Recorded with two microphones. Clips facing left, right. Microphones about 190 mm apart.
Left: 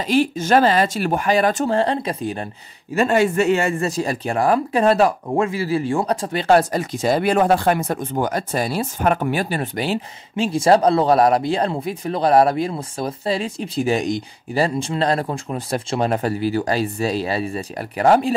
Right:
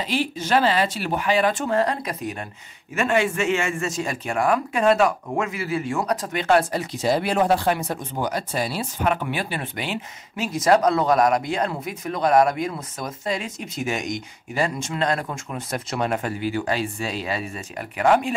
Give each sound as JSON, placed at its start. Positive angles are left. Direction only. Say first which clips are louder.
{"t": 0.0, "sound": "speech", "louder": "left 7 dB", "side_deg": 45}